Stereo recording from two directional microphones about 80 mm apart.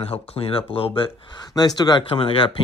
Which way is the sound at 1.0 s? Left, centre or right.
Left.